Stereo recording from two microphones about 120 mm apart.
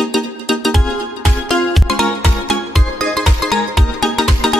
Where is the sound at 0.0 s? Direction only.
Centre (ahead or behind).